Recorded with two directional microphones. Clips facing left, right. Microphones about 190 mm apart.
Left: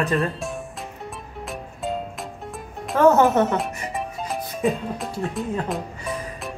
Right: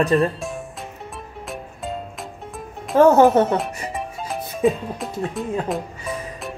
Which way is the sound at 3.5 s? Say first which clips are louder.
Right 2 dB; centre (ahead or behind).